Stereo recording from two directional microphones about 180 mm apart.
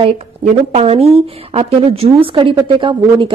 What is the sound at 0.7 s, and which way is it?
A woman's voice, 35° right (ahead or behind).